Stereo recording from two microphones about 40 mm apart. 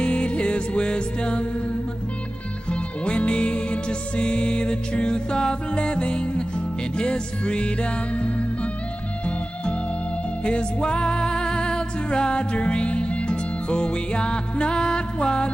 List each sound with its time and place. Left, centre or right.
0.0 s music: left
2.7 s music: left
10.4 s music: left